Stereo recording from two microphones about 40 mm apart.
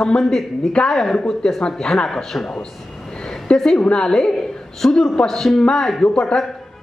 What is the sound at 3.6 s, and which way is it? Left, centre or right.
A woman's voice, centre.